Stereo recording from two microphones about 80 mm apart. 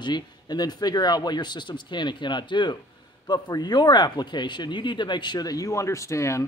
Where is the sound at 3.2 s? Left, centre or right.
Left.